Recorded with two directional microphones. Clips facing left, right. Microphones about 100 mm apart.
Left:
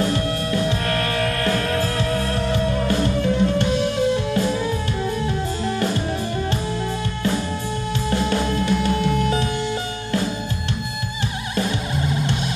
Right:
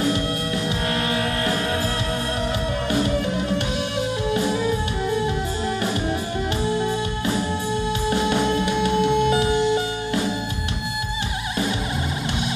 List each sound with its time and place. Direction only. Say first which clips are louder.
0.8 s music: left 1 dB; 20° right (ahead or behind)
8.1 s music: even; 20° right (ahead or behind)